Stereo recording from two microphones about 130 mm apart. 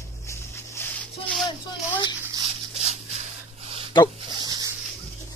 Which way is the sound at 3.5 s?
45° right (ahead or behind).